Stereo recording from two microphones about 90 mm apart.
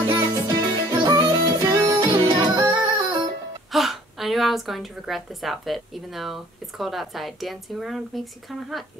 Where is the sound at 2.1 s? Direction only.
50° right (ahead or behind).